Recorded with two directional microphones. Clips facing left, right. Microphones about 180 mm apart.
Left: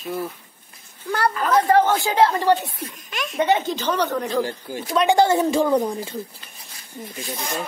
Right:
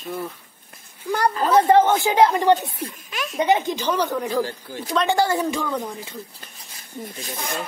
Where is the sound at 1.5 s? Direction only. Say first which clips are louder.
Right 2 dB; 20° right (ahead or behind).